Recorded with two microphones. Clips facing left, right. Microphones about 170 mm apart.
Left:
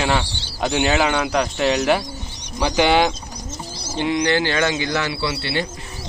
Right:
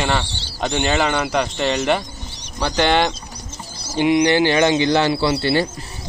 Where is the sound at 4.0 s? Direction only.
15° right (ahead or behind).